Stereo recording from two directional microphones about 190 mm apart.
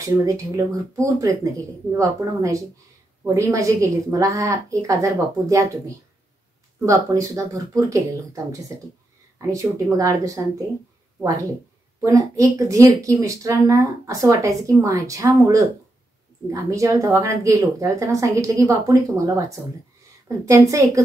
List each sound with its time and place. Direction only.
0.0 s a woman's voice: 15° right (ahead or behind)
20.4 s a woman's voice: 15° right (ahead or behind)